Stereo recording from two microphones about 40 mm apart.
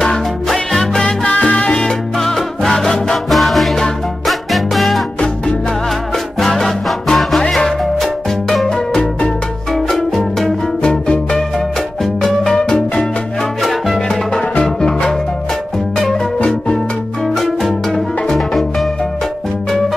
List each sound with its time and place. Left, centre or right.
0.5 s music: centre
1.0 s salsa music: left
1.9 s music: centre
3.3 s music: centre
6.4 s music: centre
8.6 s music: centre
9.8 s music: centre
10.8 s music: left
12.5 s music: left
13.6 s music: centre
14.6 s music: left
16.4 s music: left
17.4 s music: centre